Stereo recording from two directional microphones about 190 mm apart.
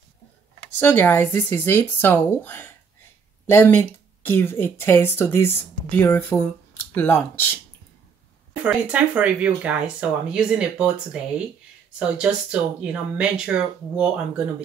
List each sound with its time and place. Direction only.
0.7 s speech: 10° left (ahead or behind)
8.6 s speech: 5° right (ahead or behind)
12.2 s speech: 5° right (ahead or behind)